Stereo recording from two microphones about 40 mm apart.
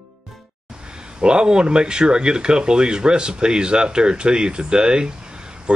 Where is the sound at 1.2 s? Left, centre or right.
Right.